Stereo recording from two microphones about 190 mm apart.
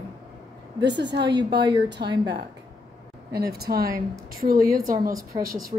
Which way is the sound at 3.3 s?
55° right (ahead or behind).